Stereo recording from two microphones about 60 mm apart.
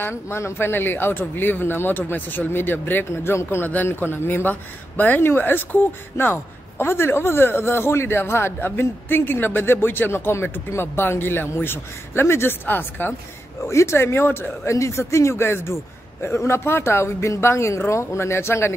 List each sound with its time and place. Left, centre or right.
0.0 s a man's voice: left
3.4 s a man's voice: left
13.7 s a man's voice: left
14.7 s speech: left